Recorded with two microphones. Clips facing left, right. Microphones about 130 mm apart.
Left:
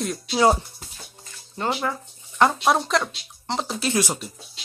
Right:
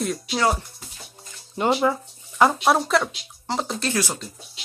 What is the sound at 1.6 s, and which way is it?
Speech, 15° right (ahead or behind).